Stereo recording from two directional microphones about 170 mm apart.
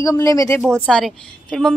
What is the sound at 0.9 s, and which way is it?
Speech, 5° left (ahead or behind).